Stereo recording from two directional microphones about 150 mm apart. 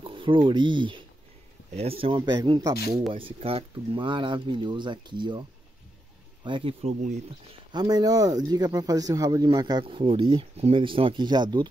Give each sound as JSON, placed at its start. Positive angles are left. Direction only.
{"t": 0.0, "sound": "speech", "side_deg": -35}
{"t": 6.4, "sound": "speech", "side_deg": -35}
{"t": 7.7, "sound": "speech", "side_deg": -25}